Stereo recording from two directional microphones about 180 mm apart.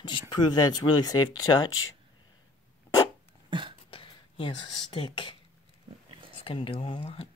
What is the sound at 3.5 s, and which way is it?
Cough, 25° right (ahead or behind).